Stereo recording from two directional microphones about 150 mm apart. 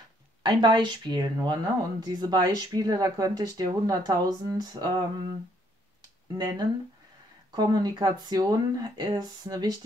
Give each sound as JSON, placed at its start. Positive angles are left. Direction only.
{"t": 0.4, "sound": "speech", "side_deg": -30}
{"t": 6.3, "sound": "speech", "side_deg": -30}